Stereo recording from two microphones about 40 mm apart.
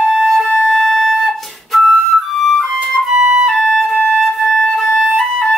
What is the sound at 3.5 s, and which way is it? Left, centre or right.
Music, centre.